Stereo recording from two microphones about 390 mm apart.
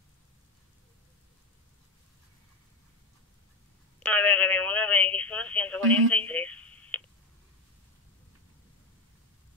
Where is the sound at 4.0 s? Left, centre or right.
Centre.